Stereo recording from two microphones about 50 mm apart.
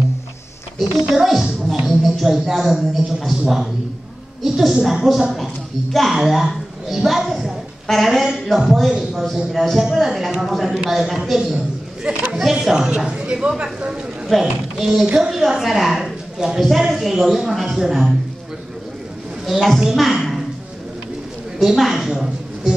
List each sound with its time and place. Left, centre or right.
0.7 s a woman's voice: centre
1.9 s a sound: centre
2.4 s a woman's voice: centre
7.8 s a woman's voice: centre
12.0 s a sound: right
12.4 s speech: centre
14.2 s a woman's voice: centre
19.4 s a woman's voice: centre
21.5 s a woman's voice: centre
22.1 s a sound: centre